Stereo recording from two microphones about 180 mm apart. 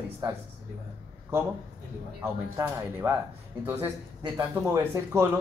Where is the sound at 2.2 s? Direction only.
10° right (ahead or behind).